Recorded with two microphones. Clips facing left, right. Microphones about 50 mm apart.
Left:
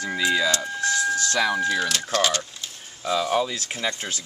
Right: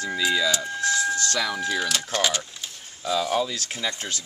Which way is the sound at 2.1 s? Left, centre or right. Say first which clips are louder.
Left 3 dB; centre.